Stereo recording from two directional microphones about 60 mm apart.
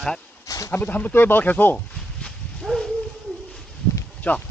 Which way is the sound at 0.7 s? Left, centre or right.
Left.